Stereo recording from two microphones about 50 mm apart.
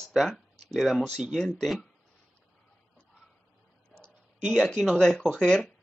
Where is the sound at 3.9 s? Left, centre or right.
Centre.